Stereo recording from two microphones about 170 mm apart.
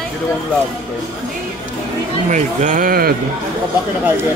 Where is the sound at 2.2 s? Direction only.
50° right (ahead or behind).